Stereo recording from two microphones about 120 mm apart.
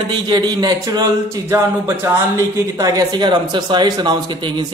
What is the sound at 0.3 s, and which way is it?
Speech, 35° right (ahead or behind).